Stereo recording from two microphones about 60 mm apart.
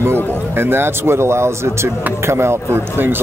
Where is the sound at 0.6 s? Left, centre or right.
Right.